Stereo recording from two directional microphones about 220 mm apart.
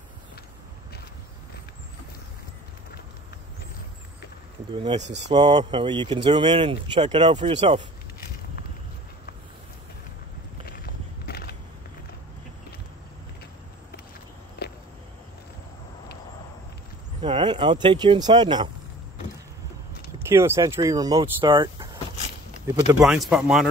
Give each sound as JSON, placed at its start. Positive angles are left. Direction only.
{"t": 4.7, "sound": "speech", "side_deg": -25}
{"t": 5.0, "sound": "speech", "side_deg": -50}
{"t": 5.3, "sound": "speech", "side_deg": -20}
{"t": 11.2, "sound": "a sound", "side_deg": 45}
{"t": 14.6, "sound": "cricket", "side_deg": 45}
{"t": 17.2, "sound": "speech", "side_deg": -20}
{"t": 20.2, "sound": "speech", "side_deg": -10}
{"t": 23.0, "sound": "speech", "side_deg": 0}